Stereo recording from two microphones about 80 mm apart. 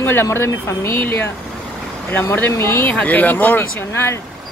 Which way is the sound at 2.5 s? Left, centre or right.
Left.